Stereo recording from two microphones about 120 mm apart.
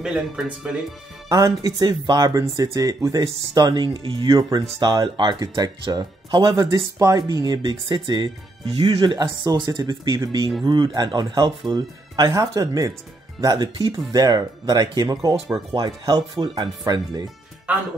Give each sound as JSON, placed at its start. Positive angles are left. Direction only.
{"t": 0.0, "sound": "speech", "side_deg": -5}
{"t": 1.3, "sound": "speech", "side_deg": -30}